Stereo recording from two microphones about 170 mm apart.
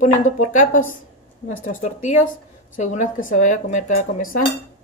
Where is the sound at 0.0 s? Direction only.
45° left (ahead or behind).